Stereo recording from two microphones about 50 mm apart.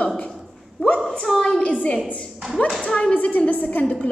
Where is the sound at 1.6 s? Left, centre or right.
Left.